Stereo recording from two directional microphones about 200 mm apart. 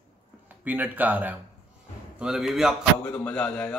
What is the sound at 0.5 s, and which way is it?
A man's voice, 10° right (ahead or behind).